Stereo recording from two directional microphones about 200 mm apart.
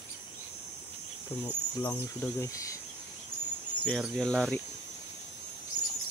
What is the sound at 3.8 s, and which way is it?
Speech, 5° left (ahead or behind).